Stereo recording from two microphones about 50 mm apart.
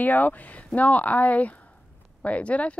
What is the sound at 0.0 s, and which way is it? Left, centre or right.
A woman's voice, left.